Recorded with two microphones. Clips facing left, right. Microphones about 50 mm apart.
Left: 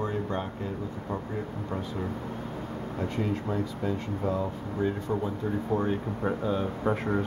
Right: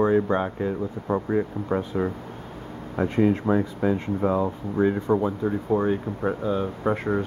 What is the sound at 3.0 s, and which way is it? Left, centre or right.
Speech, right.